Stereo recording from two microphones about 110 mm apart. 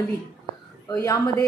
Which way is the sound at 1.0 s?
30° left (ahead or behind).